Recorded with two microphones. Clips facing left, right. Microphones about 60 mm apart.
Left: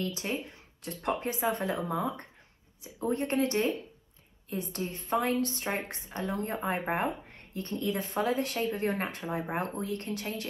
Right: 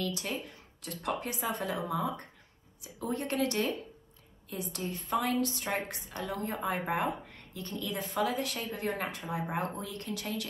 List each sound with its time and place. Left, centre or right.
0.0 s speech: left
2.8 s speech: left
7.2 s a sound: left
7.8 s speech: left